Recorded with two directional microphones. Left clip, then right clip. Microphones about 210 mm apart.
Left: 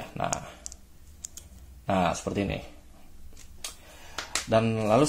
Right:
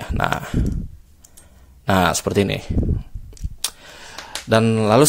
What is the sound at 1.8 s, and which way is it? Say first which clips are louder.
Speech: right 9 dB; 45° right (ahead or behind).